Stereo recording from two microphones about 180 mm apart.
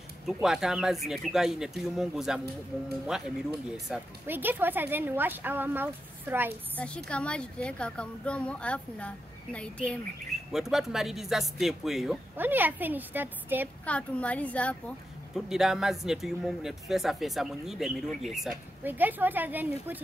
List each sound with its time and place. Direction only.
0.3 s speech: 5° right (ahead or behind)
6.8 s speech: 5° left (ahead or behind); by 13.7 s 10° right (ahead or behind)
13.8 s speech: 5° left (ahead or behind); by 20.0 s 10° right (ahead or behind)